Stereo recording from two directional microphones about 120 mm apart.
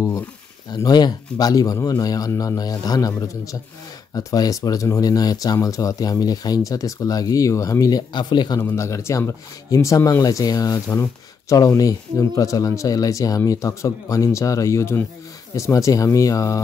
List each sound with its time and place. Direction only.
0.7 s speech: 35° left (ahead or behind)
8.5 s speech: 20° left (ahead or behind)